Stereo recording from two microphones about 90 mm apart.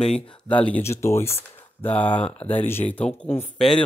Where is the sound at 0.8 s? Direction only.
30° left (ahead or behind); by 3.3 s 15° left (ahead or behind).